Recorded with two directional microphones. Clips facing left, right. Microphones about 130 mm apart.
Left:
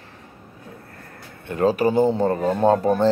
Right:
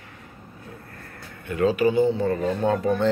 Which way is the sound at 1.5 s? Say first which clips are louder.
Left 1 dB; 40° left (ahead or behind).